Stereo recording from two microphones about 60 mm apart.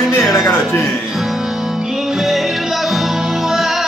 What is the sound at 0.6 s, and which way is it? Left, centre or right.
Music, centre.